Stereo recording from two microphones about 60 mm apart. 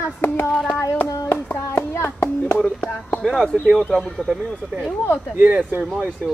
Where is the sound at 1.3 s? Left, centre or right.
Left.